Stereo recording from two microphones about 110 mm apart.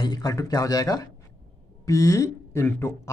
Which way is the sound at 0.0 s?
35° left (ahead or behind).